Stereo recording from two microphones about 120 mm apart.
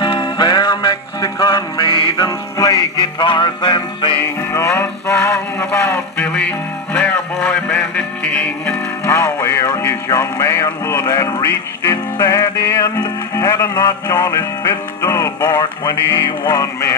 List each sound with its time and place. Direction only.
0.0 s music: 40° left (ahead or behind)
4.2 s music: 20° left (ahead or behind)
9.0 s speech: 25° left (ahead or behind)
9.8 s music: 25° left (ahead or behind)